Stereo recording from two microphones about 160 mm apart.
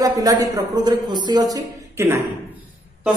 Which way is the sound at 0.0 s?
20° right (ahead or behind).